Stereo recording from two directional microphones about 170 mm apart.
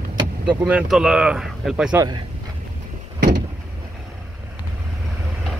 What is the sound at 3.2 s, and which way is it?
Vehicle, 75° right (ahead or behind).